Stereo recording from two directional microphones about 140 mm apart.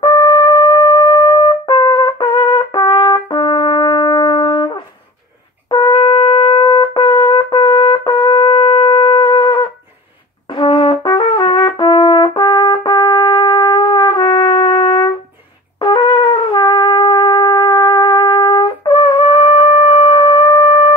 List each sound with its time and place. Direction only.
0.0 s wind instrument: 30° left (ahead or behind)
5.7 s brass instrument: 35° left (ahead or behind)
15.8 s trumpet: 35° left (ahead or behind)